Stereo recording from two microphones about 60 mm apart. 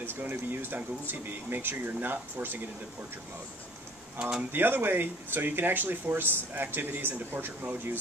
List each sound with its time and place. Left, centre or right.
0.0 s speech: right
4.2 s speech: centre
4.5 s speech: right